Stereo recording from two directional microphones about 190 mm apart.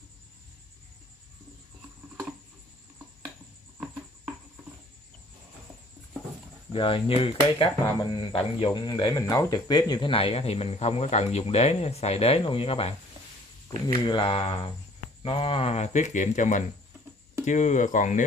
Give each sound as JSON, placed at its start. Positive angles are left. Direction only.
{"t": 6.7, "sound": "speech", "side_deg": 30}